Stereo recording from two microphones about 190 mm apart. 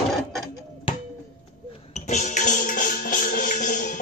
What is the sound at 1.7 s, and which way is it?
Music, 35° left (ahead or behind).